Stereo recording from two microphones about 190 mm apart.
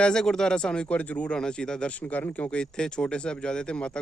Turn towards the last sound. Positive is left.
turn(degrees=5)  # may be behind; listen again after turning